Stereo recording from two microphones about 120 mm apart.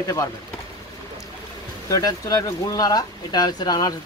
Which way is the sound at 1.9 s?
30° left (ahead or behind).